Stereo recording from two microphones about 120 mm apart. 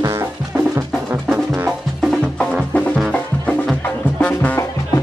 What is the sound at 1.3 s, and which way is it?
Music, 15° right (ahead or behind).